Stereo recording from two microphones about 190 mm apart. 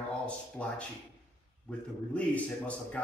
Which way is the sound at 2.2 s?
10° left (ahead or behind).